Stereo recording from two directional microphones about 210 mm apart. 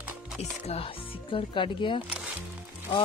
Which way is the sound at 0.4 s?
30° left (ahead or behind).